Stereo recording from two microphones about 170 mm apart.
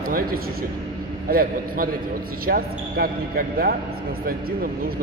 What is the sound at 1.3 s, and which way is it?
Speech, 60° right (ahead or behind).